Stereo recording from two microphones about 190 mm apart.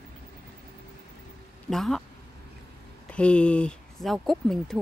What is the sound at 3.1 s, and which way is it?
Speech, 5° left (ahead or behind).